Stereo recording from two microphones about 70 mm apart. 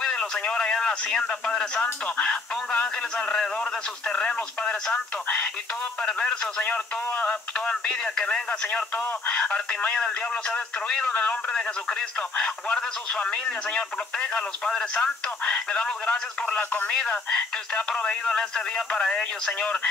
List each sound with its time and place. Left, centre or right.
0.0 s speech: centre